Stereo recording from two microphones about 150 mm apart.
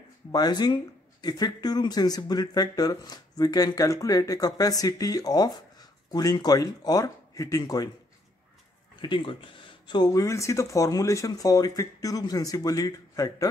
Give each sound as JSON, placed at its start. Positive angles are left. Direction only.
{"t": 0.3, "sound": "speech", "side_deg": 30}
{"t": 9.0, "sound": "speech", "side_deg": 35}